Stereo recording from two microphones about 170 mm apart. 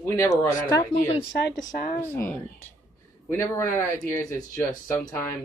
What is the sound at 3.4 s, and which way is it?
Speech, 15° left (ahead or behind).